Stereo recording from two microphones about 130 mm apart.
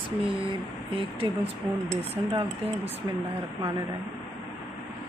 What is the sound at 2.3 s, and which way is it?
Speech, 50° right (ahead or behind).